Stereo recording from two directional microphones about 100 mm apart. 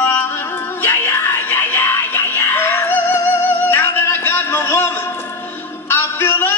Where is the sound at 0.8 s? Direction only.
20° left (ahead or behind).